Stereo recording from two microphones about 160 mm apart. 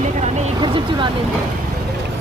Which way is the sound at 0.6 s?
30° right (ahead or behind).